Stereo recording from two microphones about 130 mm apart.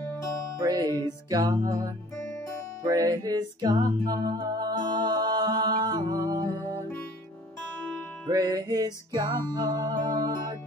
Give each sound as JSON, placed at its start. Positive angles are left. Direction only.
{"t": 0.6, "sound": "music", "side_deg": -30}
{"t": 2.3, "sound": "music", "side_deg": 25}
{"t": 2.8, "sound": "music", "side_deg": -30}
{"t": 8.3, "sound": "music", "side_deg": -30}